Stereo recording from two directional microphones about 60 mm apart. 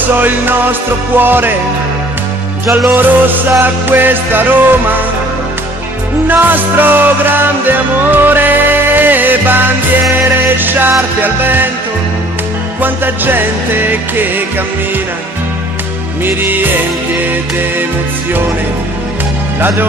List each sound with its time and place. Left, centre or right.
0.2 s music: right
2.9 s music: right
6.2 s music: right
12.8 s music: right
16.3 s music: right